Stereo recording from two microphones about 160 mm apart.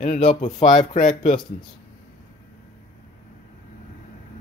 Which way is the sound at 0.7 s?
45° left (ahead or behind).